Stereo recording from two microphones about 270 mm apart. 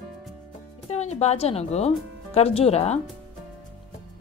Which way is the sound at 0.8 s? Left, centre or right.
Left.